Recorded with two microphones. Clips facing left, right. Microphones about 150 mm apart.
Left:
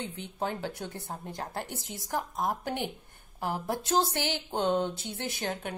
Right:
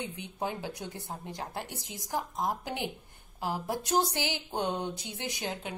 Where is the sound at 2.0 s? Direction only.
55° left (ahead or behind).